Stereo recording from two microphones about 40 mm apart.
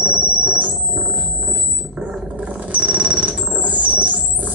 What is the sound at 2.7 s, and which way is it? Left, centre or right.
Synthesizer, right.